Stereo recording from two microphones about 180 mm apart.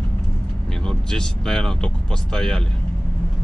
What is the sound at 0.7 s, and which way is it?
Speech, 5° left (ahead or behind).